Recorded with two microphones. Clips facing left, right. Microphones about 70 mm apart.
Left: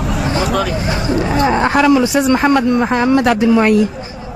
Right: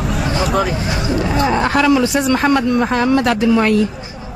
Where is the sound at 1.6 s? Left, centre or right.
Centre.